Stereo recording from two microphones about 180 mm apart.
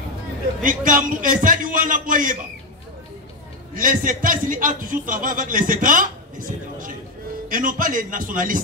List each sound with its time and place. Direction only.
0.6 s a man's voice: 50° right (ahead or behind)
3.7 s a man's voice: 50° right (ahead or behind)